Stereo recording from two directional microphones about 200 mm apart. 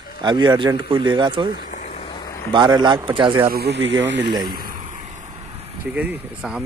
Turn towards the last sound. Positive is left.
turn(degrees=-5)  # may be behind; listen again after turning